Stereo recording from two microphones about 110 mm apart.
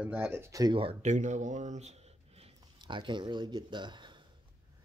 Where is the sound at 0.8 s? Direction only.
75° right (ahead or behind).